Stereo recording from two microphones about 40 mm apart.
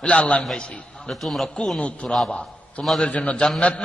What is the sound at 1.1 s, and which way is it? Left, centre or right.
Speech, centre.